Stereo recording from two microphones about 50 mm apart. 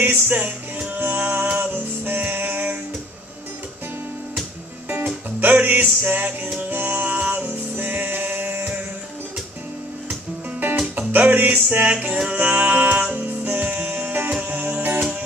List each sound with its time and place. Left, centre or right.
0.0 s music: right
4.8 s music: right
11.0 s music: right